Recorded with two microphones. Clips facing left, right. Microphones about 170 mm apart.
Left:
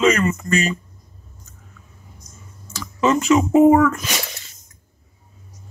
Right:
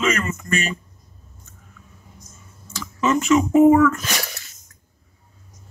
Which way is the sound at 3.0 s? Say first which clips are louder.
Left 1 dB; 35° left (ahead or behind).